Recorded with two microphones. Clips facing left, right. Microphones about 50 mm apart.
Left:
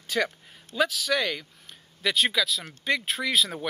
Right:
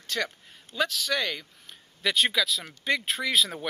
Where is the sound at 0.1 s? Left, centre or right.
Centre.